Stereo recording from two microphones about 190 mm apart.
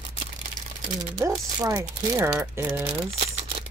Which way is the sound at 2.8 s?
30° right (ahead or behind).